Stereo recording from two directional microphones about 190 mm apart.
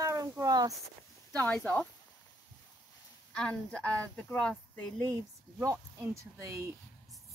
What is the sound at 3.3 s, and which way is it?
Speech, 5° left (ahead or behind).